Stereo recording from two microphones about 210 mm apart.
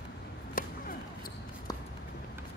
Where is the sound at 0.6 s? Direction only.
40° left (ahead or behind).